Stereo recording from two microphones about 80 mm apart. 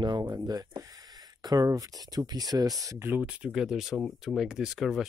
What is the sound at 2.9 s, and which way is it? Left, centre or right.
Speech, right.